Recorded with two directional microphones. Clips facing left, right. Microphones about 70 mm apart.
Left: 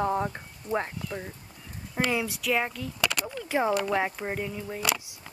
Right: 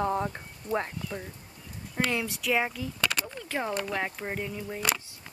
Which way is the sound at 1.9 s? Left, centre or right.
Centre.